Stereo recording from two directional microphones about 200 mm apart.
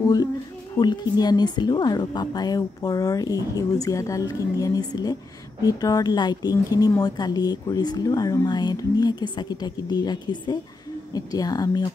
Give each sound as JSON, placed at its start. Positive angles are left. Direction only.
{"t": 0.0, "sound": "a woman's voice", "side_deg": 20}